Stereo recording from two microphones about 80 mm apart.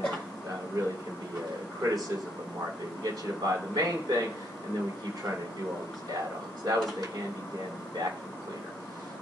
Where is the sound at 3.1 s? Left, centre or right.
Right.